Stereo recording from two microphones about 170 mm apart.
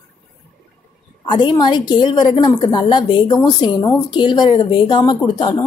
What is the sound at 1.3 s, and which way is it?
Speech, 25° left (ahead or behind).